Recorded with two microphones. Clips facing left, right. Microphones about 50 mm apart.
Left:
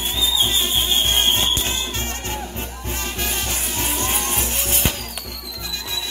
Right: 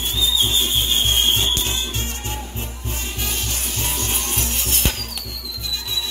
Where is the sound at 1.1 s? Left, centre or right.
Left.